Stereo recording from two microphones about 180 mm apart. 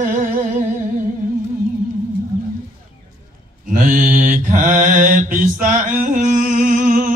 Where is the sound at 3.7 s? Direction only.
45° right (ahead or behind).